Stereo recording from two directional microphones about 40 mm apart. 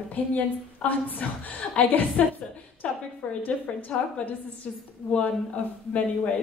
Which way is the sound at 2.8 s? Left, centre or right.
Left.